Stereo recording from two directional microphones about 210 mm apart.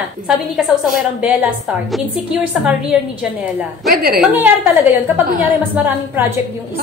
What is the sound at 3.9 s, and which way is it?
Speech, 45° right (ahead or behind).